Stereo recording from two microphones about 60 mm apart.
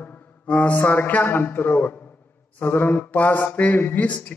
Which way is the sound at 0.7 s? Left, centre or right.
Left.